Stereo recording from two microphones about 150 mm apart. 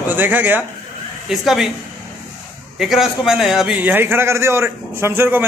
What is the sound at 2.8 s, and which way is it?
A man's voice, centre (ahead or behind).